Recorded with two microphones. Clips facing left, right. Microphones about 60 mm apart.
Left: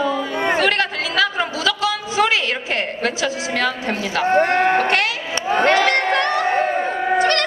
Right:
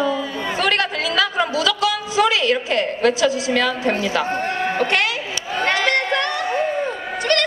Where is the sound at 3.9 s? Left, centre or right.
Right.